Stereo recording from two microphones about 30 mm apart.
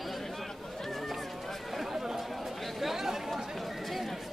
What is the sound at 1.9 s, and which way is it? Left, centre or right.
Chatter, centre.